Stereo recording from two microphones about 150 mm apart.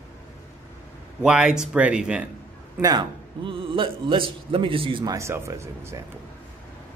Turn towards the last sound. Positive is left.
turn(degrees=-20)  # may be behind; listen again after turning